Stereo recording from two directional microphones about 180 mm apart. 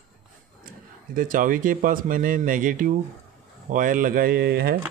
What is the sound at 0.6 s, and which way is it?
Speech, 50° right (ahead or behind).